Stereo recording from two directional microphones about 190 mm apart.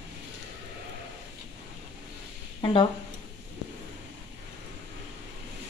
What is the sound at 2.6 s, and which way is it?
Speech, 25° left (ahead or behind).